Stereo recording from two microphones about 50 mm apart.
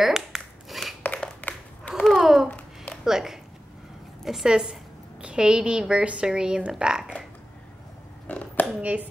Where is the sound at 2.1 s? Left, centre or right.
Centre.